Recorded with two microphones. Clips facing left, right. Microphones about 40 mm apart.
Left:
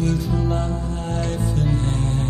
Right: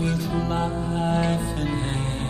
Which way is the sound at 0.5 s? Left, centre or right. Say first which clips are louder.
Right 1 dB; right.